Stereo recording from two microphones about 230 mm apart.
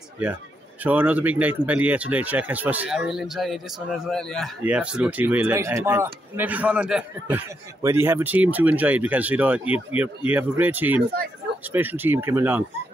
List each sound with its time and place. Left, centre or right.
0.8 s speech: centre